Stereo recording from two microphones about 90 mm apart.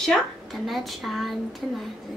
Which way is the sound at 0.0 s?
5° left (ahead or behind).